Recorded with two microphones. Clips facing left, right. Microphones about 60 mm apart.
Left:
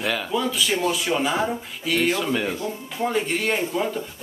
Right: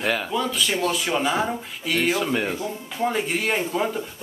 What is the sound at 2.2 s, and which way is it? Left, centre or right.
Speech, centre.